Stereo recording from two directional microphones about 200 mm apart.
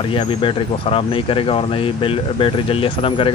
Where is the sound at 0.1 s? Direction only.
25° left (ahead or behind).